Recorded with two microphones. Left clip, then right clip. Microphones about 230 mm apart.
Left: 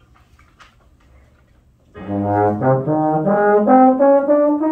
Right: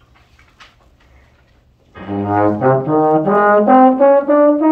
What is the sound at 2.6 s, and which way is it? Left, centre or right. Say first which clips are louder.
Brass instrument: right 4 dB; left.